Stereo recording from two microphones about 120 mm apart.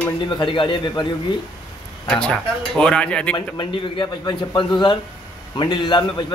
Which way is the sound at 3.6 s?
40° left (ahead or behind).